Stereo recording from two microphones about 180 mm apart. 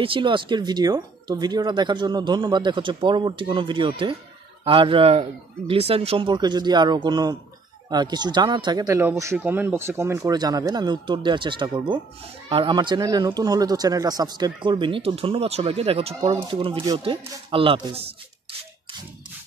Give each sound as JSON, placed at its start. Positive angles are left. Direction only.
{"t": 0.0, "sound": "speech", "side_deg": -30}